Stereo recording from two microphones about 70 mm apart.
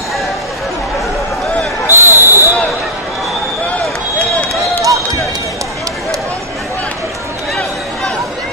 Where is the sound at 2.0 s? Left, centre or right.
Right.